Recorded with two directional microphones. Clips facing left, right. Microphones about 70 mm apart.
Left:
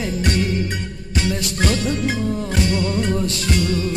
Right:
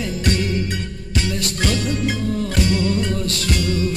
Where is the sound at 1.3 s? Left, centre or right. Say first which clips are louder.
Left 1 dB; left.